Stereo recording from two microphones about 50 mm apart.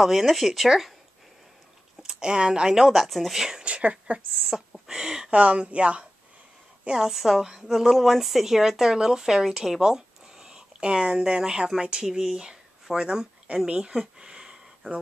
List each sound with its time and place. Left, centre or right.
0.0 s speech: centre
2.0 s speech: centre
2.7 s a woman's voice: centre
3.6 s a sound: right
4.4 s speech: centre
5.3 s speech: right
6.9 s a woman's voice: centre
13.7 s a sound: centre